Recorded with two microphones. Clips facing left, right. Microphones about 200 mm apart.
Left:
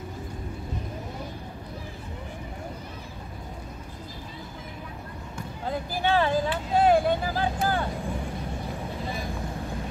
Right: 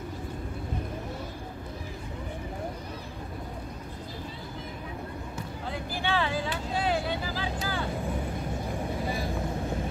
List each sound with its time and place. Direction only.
5.7 s speech: 45° left (ahead or behind)